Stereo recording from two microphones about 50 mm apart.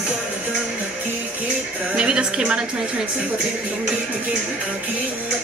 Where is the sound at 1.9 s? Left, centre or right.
Centre.